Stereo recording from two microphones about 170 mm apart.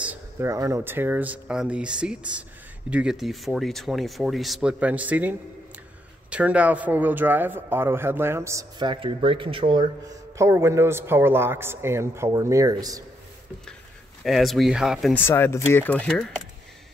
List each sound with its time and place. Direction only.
0.0 s a man's voice: 10° right (ahead or behind)
6.3 s a man's voice: 10° right (ahead or behind)
14.2 s speech: centre (ahead or behind)
15.1 s speech: 15° left (ahead or behind)